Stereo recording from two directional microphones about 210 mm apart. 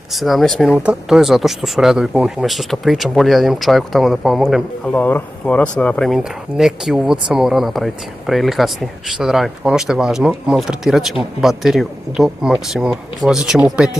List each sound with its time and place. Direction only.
0.1 s speech: centre (ahead or behind)